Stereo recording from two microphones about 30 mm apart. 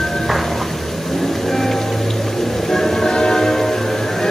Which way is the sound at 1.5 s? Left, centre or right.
Centre.